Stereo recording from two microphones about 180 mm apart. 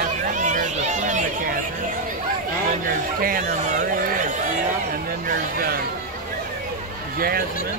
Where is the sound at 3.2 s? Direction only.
50° right (ahead or behind).